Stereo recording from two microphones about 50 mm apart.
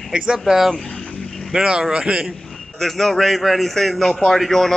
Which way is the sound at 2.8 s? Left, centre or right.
Centre.